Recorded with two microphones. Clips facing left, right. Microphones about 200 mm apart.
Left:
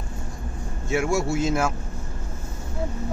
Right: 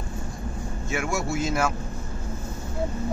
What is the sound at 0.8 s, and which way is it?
Speech, 30° left (ahead or behind).